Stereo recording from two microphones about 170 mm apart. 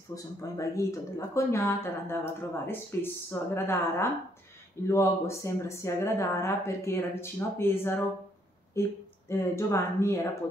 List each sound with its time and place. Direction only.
0.1 s speech: 20° left (ahead or behind)